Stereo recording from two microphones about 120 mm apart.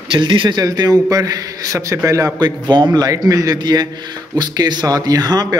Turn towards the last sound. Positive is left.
turn(degrees=-35)  # may be behind; listen again after turning